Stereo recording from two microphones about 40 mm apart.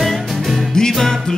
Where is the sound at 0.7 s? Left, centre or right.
Centre.